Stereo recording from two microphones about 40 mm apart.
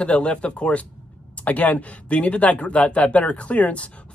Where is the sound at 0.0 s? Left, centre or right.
Left.